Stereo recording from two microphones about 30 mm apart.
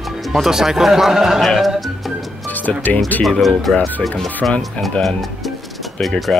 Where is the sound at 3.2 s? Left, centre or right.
Centre.